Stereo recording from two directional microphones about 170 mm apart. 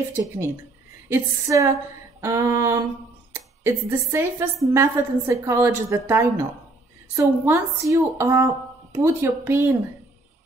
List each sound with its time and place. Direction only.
0.1 s a woman's voice: 15° right (ahead or behind)